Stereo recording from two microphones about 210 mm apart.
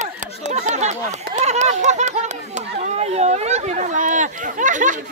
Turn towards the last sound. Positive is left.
turn(degrees=-35)  # may be behind; listen again after turning